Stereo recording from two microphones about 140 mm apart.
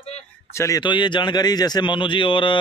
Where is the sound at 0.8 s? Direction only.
35° left (ahead or behind).